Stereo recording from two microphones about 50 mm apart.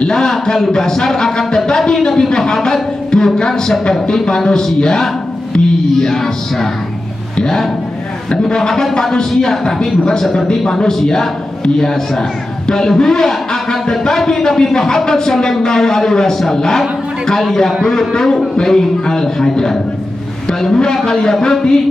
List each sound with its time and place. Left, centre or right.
0.0 s a man's voice: centre
8.3 s a man's voice: centre